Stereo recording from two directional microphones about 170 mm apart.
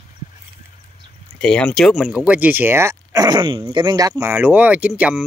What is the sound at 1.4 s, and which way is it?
Speech, 5° left (ahead or behind).